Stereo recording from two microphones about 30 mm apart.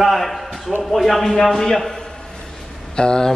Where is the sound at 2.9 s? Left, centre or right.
Left.